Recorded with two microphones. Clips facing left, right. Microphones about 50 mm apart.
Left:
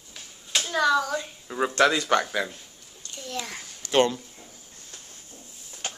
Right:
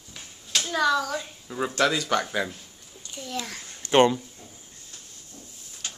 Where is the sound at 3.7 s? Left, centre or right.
Right.